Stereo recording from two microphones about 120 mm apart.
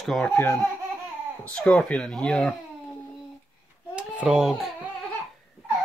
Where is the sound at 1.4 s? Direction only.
10° left (ahead or behind).